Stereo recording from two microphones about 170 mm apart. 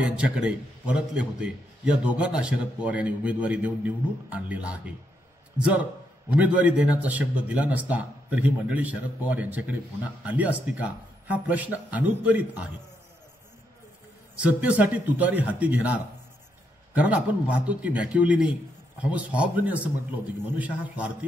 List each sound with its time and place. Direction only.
0.0 s a man's voice: 5° right (ahead or behind)
6.3 s a man's voice: 10° right (ahead or behind)
14.4 s a man's voice: 10° right (ahead or behind)